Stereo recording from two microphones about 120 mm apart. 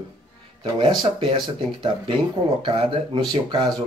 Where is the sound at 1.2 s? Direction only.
40° right (ahead or behind).